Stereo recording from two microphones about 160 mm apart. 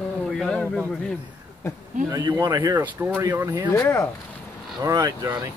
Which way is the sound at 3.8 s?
15° left (ahead or behind).